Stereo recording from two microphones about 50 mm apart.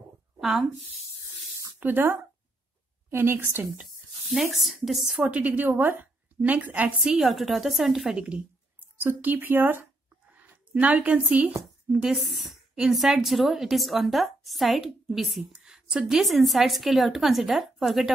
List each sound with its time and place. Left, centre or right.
0.4 s speech: centre
1.8 s a woman's voice: right
4.3 s a woman's voice: centre
5.2 s speech: right
6.4 s speech: right
7.2 s a woman's voice: centre
8.0 s a woman's voice: centre
9.0 s speech: right
10.3 s a sound: right
12.0 s a woman's voice: centre